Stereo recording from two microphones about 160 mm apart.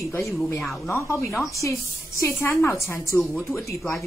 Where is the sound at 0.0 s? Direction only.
20° left (ahead or behind).